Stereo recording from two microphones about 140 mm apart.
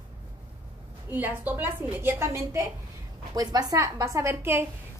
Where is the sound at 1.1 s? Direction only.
10° right (ahead or behind).